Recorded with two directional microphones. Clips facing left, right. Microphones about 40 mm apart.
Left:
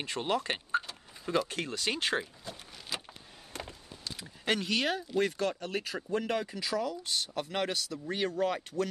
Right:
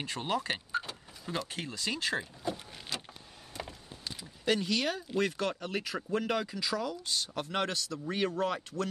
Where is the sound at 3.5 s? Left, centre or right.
Left.